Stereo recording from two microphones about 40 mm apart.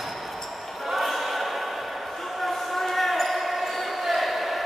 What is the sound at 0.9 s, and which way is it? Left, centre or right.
Basketball bounce, centre.